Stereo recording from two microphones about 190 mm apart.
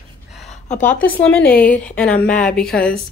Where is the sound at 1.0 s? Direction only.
5° left (ahead or behind).